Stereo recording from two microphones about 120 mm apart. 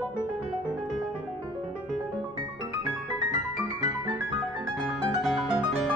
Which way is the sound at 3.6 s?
35° right (ahead or behind).